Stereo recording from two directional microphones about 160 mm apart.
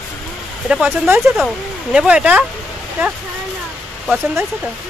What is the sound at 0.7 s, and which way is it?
Speech, 5° right (ahead or behind).